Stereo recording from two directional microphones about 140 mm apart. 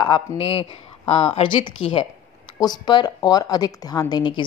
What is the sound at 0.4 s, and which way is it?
A woman's voice, 45° left (ahead or behind).